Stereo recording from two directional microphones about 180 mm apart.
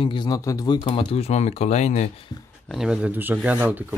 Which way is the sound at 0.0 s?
25° left (ahead or behind).